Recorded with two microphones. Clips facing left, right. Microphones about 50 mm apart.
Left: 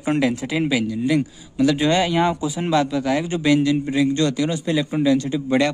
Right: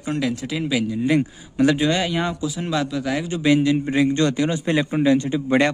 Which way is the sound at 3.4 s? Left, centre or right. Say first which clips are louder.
Right 1 dB; centre.